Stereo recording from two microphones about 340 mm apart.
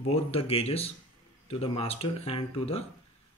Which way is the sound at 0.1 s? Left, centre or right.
Centre.